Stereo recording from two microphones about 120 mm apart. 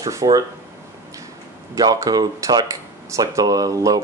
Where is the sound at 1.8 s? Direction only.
35° right (ahead or behind).